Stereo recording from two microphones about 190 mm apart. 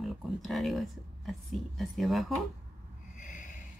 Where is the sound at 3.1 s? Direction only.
45° left (ahead or behind).